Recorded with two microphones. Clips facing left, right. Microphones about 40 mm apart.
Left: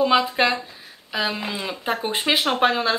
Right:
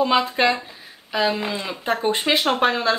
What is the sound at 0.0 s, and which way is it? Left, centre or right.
Speech, centre.